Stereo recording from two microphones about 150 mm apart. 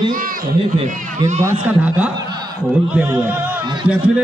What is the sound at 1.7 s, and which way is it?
Speech, 15° right (ahead or behind).